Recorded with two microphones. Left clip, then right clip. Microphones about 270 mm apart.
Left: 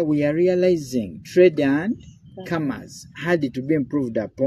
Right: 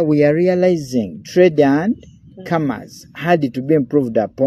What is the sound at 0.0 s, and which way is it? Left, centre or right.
Speech, right.